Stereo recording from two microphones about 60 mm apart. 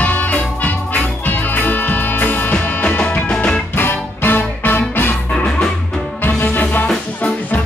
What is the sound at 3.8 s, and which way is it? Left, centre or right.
Music, left.